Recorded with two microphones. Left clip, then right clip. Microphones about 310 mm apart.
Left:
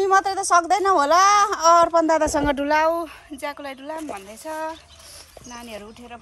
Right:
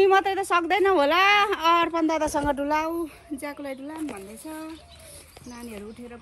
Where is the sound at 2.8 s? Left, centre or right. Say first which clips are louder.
Left 8 dB; centre.